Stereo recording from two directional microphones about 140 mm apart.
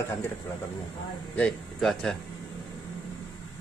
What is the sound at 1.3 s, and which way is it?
Speech, 5° left (ahead or behind).